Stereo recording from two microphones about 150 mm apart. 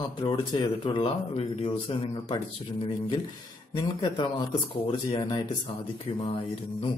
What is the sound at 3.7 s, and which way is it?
A man's voice, 35° left (ahead or behind).